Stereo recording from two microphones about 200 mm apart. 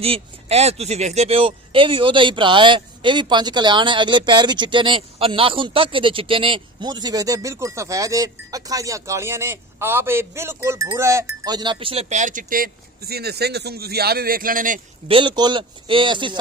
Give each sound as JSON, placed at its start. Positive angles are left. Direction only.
{"t": 0.0, "sound": "speech", "side_deg": -30}
{"t": 15.0, "sound": "speech", "side_deg": -25}